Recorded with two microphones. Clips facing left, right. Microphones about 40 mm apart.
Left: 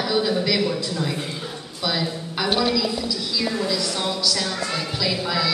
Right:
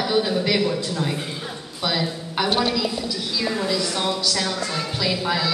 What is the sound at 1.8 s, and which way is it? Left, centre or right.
Speech, centre.